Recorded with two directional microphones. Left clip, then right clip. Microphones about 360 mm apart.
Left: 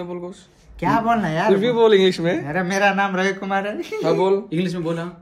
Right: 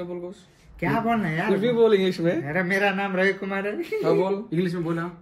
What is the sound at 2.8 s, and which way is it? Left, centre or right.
Speech, centre.